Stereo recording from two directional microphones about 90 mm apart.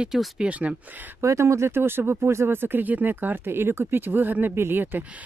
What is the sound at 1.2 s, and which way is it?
Speech, 30° right (ahead or behind).